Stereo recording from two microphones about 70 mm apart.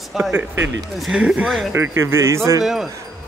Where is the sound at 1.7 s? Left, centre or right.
Right.